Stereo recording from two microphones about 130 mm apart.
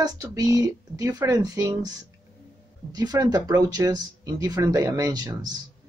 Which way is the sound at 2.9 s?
30° right (ahead or behind).